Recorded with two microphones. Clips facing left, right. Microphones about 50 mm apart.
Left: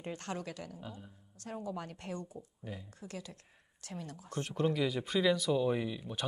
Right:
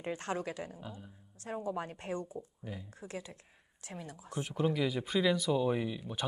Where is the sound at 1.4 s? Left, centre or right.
Right.